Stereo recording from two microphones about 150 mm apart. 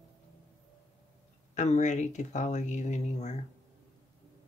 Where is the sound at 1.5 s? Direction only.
50° left (ahead or behind).